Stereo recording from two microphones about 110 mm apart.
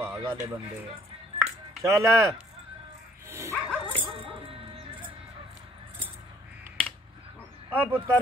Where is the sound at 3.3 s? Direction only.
25° right (ahead or behind).